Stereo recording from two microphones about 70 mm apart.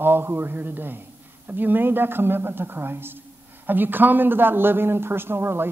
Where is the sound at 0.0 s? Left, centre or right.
Right.